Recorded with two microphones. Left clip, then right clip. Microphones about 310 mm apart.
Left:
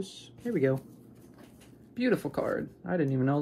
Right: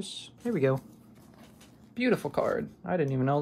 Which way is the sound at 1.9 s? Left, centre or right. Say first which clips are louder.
Right 1 dB; right.